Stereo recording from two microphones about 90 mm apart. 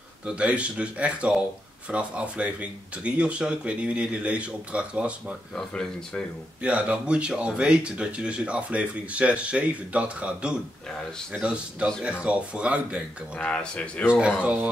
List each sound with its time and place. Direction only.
0.4 s speech: 15° right (ahead or behind)
5.6 s speech: 5° left (ahead or behind)
6.6 s speech: 15° right (ahead or behind)
13.4 s speech: 10° left (ahead or behind)
14.0 s speech: 15° right (ahead or behind)